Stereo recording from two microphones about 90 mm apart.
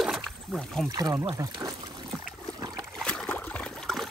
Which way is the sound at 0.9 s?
45° right (ahead or behind).